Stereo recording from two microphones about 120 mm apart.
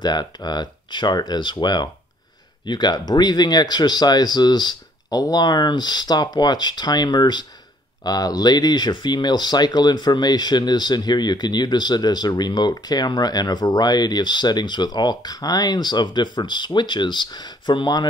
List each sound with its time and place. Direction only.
0.0 s speech: 35° left (ahead or behind)